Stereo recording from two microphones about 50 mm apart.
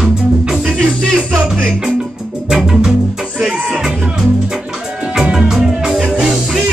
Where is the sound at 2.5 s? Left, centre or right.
Centre.